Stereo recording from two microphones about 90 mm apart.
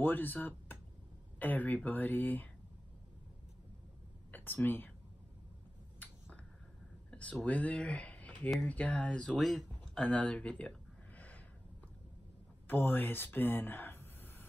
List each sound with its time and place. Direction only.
0.0 s speech: 20° left (ahead or behind)
4.3 s speech: 20° left (ahead or behind)
7.1 s speech: 10° left (ahead or behind)
10.0 s a sound: 15° left (ahead or behind)
12.6 s speech: 25° left (ahead or behind)